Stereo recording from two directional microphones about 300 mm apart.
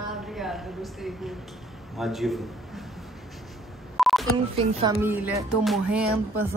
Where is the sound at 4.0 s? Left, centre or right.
Centre.